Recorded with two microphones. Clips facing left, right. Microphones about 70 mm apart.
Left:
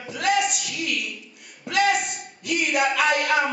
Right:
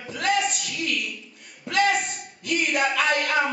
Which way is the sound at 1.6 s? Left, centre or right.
Centre.